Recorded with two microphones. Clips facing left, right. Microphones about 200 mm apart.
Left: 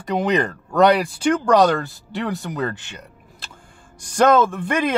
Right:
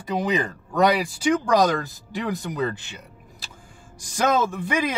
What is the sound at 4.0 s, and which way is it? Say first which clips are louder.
Speech: left 6 dB; 60° left (ahead or behind).